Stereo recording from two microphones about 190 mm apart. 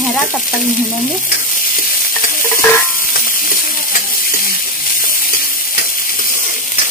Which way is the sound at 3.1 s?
50° left (ahead or behind).